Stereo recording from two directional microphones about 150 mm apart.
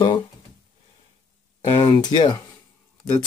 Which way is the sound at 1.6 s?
35° left (ahead or behind).